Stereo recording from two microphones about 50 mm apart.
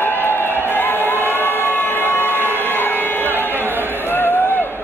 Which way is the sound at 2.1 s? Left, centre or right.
Left.